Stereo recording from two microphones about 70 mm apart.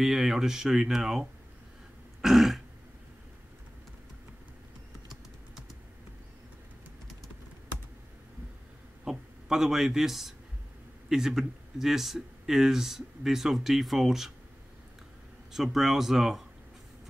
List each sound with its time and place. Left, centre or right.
0.0 s speech: centre
2.2 s speech: centre
9.0 s a sound: centre
11.1 s speech: centre
15.5 s speech: centre